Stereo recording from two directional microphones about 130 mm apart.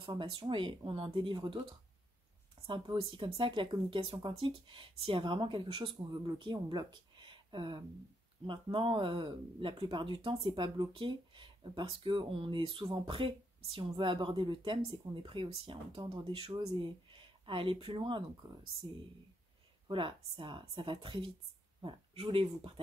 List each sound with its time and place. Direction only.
0.0 s speech: 40° right (ahead or behind)
16.5 s speech: 35° right (ahead or behind)